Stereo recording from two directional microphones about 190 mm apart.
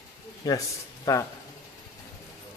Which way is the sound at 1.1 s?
20° left (ahead or behind).